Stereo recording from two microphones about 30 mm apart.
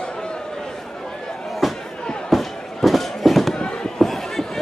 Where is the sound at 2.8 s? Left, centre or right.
Centre.